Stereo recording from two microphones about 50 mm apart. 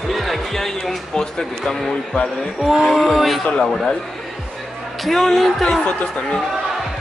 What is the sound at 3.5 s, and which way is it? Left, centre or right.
Speech, centre.